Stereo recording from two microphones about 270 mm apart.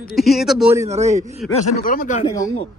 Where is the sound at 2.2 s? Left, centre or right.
Centre.